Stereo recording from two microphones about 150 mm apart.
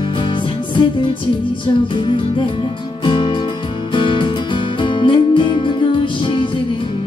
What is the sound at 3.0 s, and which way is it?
Music, 35° left (ahead or behind).